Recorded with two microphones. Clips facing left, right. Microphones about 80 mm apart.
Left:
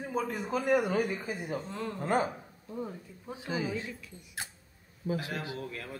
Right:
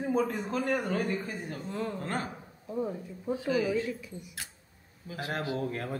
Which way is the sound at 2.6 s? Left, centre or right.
Centre.